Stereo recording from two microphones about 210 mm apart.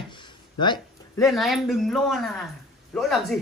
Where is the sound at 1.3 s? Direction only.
Centre (ahead or behind).